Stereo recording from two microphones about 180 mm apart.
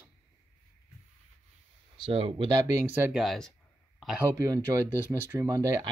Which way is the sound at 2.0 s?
30° right (ahead or behind).